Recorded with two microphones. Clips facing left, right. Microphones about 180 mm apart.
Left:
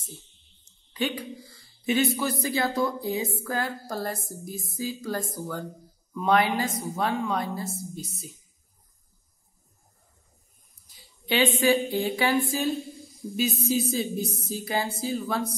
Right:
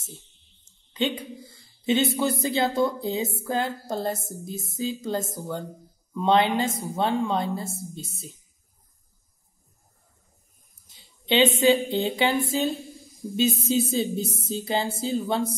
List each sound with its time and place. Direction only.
0.7 s a sound: 25° right (ahead or behind)
2.1 s a woman's voice: 25° right (ahead or behind)
10.9 s a woman's voice: 20° right (ahead or behind)